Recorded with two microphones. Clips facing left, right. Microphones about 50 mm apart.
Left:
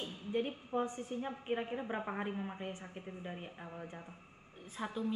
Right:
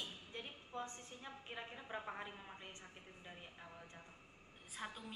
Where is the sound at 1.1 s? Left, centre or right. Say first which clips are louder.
Left 13 dB; left.